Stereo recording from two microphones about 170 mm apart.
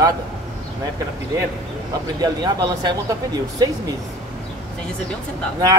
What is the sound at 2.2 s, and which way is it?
Speech, 25° right (ahead or behind).